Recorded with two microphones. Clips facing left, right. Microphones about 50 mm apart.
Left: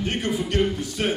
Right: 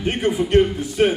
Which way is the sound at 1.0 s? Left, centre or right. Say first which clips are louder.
Right 8 dB; right.